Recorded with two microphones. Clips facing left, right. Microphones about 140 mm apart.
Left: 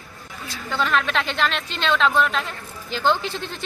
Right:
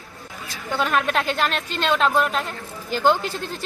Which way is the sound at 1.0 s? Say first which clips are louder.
Right 1 dB; 45° right (ahead or behind).